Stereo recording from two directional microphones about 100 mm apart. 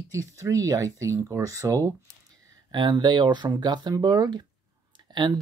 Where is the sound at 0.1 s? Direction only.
30° right (ahead or behind).